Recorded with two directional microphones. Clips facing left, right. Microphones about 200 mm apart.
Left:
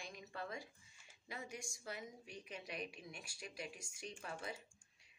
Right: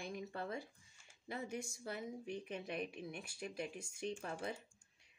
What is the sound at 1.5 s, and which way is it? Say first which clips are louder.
Speech: right 5 dB; 60° right (ahead or behind).